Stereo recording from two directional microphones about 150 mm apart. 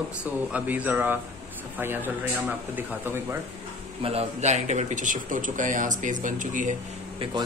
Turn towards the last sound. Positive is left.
turn(degrees=-60)  # may be behind; listen again after turning